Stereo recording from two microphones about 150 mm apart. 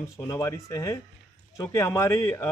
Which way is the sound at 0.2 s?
20° left (ahead or behind).